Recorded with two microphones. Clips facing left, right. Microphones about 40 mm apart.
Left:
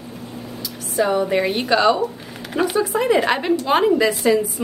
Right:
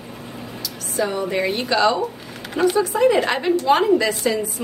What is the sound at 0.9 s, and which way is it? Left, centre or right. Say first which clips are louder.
Speech: left 4 dB; left.